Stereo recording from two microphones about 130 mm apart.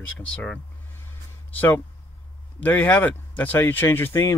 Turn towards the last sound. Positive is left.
turn(degrees=25)  # may be behind; listen again after turning